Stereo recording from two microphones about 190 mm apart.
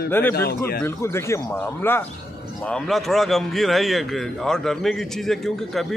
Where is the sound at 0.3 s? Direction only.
55° left (ahead or behind).